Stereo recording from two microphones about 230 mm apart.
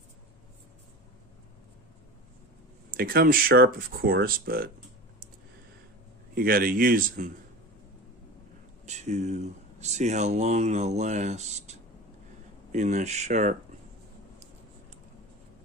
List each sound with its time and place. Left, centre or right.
2.9 s speech: right
6.3 s speech: right
8.8 s speech: right